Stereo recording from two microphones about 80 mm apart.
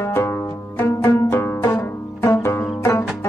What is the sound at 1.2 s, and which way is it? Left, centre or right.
Pizzicato, left.